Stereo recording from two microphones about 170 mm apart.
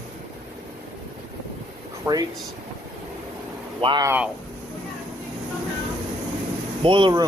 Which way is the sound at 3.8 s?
30° right (ahead or behind).